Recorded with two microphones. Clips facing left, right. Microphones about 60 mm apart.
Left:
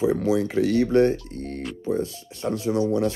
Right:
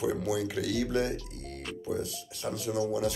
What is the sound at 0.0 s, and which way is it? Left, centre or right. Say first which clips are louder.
Speech: left 8 dB; left.